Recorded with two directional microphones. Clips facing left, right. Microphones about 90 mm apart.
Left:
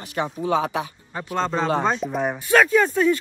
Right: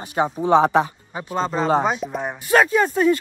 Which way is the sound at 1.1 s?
10° right (ahead or behind).